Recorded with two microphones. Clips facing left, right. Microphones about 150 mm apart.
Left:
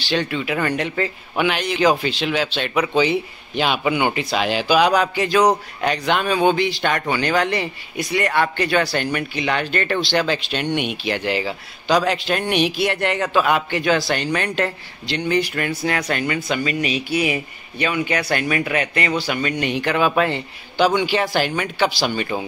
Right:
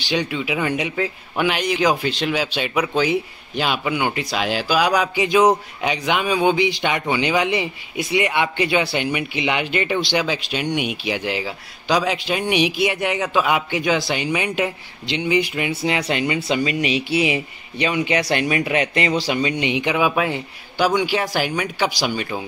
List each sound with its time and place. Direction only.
0.1 s a man's voice: 10° right (ahead or behind)
15.7 s speech: 25° right (ahead or behind)
19.6 s a man's voice: 15° right (ahead or behind)
19.9 s a man's voice: 5° right (ahead or behind)